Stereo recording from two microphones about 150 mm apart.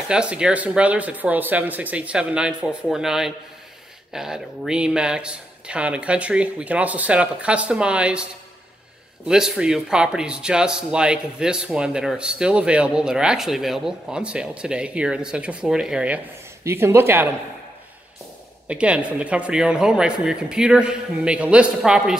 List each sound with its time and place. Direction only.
0.1 s speech: 5° right (ahead or behind)
9.3 s speech: 5° right (ahead or behind)
16.6 s speech: 15° right (ahead or behind)
18.7 s speech: 10° right (ahead or behind)